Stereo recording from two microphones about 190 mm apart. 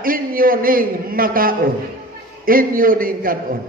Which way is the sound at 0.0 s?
50° right (ahead or behind).